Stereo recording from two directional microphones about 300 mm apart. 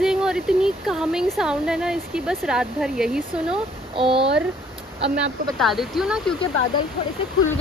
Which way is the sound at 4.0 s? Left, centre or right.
Centre.